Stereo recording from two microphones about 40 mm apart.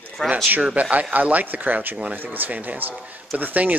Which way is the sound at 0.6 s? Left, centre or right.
Right.